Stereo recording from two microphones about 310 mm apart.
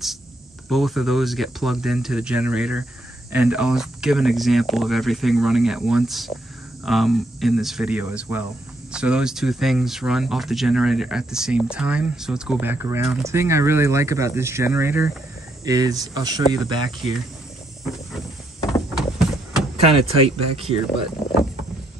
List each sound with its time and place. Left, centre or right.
0.7 s speech: centre
18.7 s a sound: centre
19.8 s speech: centre